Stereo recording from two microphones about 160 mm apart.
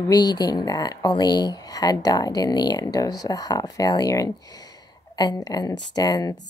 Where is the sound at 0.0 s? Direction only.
25° left (ahead or behind).